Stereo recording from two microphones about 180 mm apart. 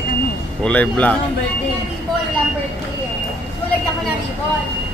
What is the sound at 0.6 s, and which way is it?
Speech, 5° left (ahead or behind).